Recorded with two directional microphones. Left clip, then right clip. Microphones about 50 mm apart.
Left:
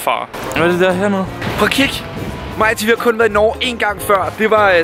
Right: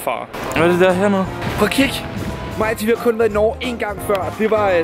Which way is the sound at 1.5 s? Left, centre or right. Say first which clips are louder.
Left 3 dB; right.